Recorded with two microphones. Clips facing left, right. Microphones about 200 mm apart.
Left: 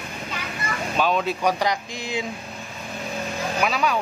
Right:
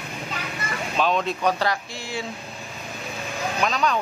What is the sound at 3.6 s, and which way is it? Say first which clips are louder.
Speech: even; 10° left (ahead or behind).